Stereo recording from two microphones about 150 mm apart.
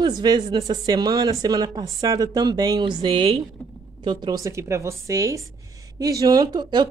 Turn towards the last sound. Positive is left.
turn(degrees=-30)  # may be behind; listen again after turning